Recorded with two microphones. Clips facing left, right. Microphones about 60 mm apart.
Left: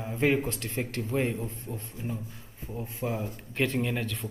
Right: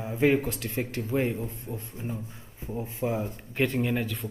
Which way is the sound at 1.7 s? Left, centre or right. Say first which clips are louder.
Right 1 dB; centre.